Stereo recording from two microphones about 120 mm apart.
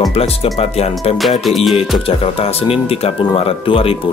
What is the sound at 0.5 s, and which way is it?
Speech, 60° left (ahead or behind).